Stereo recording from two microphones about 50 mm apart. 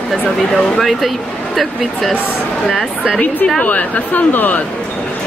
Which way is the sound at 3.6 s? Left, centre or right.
Left.